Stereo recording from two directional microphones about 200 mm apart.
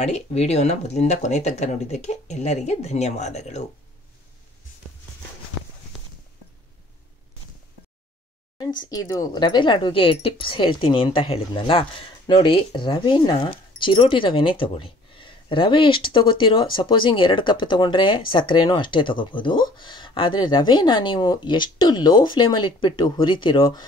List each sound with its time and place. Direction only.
0.0 s speech: 35° left (ahead or behind)
8.8 s speech: 20° left (ahead or behind)